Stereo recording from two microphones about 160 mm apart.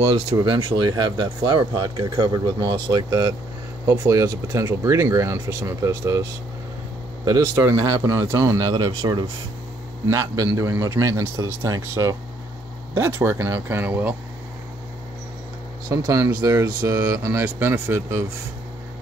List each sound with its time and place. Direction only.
0.1 s speech: 30° right (ahead or behind)
3.8 s speech: 15° right (ahead or behind)
7.2 s speech: 20° right (ahead or behind)
16.1 s speech: 25° right (ahead or behind)